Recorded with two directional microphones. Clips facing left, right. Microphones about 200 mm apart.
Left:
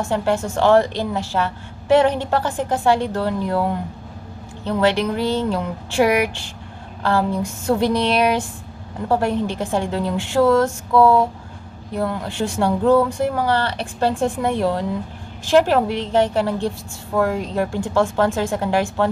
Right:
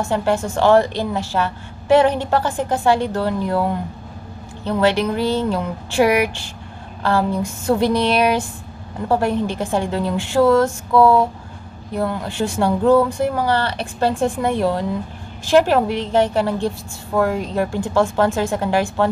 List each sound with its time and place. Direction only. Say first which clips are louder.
0.1 s a woman's voice: even; 5° right (ahead or behind)